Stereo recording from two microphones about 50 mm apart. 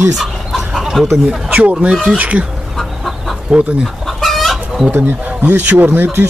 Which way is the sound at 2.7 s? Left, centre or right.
Centre.